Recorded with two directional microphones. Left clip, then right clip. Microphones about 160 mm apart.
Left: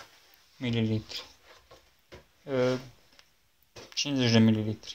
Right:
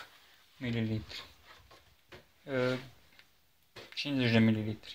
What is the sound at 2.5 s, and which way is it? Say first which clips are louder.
Speech: left 5 dB; 5° left (ahead or behind).